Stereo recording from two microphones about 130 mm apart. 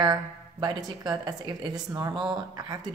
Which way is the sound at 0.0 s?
35° right (ahead or behind).